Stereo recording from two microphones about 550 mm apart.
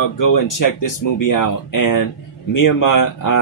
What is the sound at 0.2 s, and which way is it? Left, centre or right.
Speech, left.